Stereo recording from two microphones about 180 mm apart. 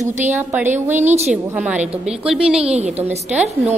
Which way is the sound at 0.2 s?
10° right (ahead or behind).